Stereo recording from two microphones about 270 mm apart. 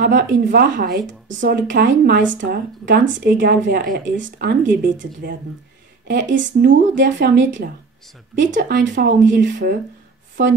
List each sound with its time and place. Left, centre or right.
0.0 s speech: right